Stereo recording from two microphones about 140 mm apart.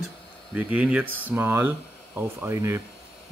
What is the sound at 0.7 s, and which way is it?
Speech, 10° right (ahead or behind).